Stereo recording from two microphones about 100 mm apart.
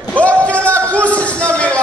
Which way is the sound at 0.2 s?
15° left (ahead or behind).